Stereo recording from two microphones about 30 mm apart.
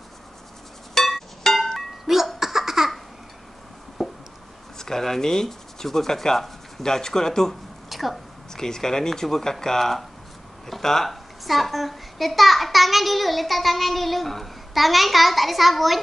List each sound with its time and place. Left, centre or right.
0.9 s music: centre
2.1 s laughter: centre
4.0 s a sound: centre
4.7 s speech: centre
7.9 s a sound: centre
8.5 s speech: centre
11.4 s a child's voice: centre